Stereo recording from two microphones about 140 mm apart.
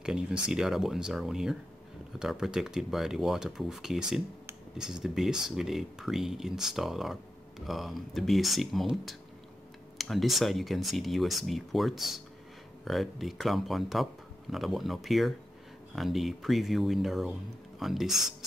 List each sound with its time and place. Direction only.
0.0 s speech: 5° right (ahead or behind)